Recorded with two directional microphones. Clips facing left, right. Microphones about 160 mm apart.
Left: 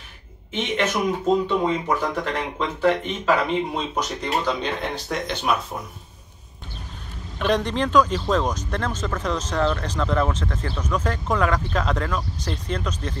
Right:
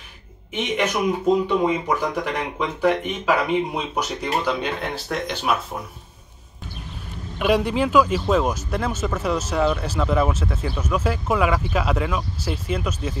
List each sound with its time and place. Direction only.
0.5 s speech: 10° right (ahead or behind)
7.3 s speech: 10° right (ahead or behind)